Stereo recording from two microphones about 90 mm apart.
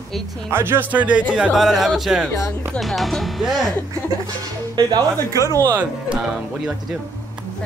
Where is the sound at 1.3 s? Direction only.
5° right (ahead or behind).